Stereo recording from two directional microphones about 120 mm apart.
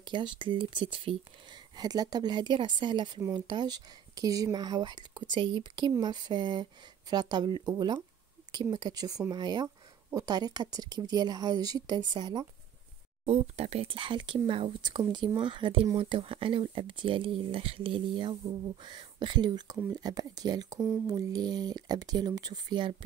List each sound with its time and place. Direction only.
0.0 s speech: 40° right (ahead or behind)
13.2 s speech: 60° right (ahead or behind); by 22.9 s 40° right (ahead or behind)